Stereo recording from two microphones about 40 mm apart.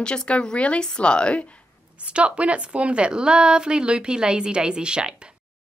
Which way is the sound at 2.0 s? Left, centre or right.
Right.